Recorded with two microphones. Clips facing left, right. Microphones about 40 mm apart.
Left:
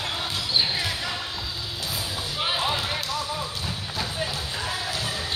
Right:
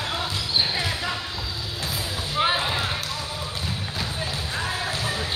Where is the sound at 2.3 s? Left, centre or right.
Right.